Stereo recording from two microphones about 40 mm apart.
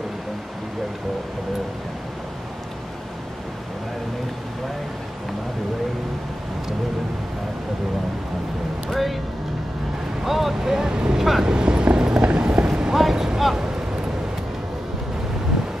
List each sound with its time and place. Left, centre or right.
8.9 s music: centre
10.2 s vehicle: centre
10.9 s vehicle: centre
11.1 s vehicle: centre
11.4 s a sound: centre
12.9 s a sound: centre